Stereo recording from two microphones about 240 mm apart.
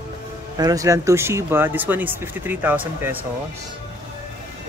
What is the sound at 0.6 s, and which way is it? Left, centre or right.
Speech, centre.